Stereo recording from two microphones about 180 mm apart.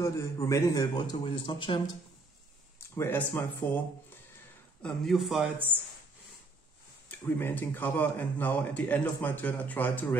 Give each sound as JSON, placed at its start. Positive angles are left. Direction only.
{"t": 0.0, "sound": "a man's voice", "side_deg": 15}
{"t": 2.9, "sound": "a man's voice", "side_deg": 10}
{"t": 4.8, "sound": "a man's voice", "side_deg": 0}
{"t": 7.1, "sound": "a man's voice", "side_deg": 10}